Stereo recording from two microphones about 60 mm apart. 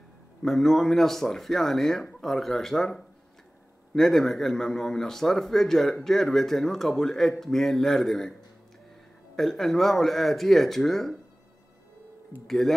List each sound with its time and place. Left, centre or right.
0.4 s speech: centre
12.4 s speech: centre